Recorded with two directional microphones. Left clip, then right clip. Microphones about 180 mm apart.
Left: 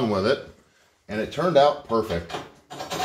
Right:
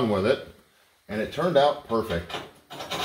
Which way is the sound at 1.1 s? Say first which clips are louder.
Left 2 dB; 5° left (ahead or behind).